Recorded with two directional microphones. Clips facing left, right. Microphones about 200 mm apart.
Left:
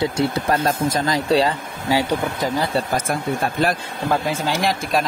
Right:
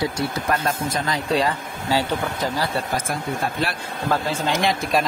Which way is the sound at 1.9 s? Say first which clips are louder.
Left 3 dB; 15° left (ahead or behind).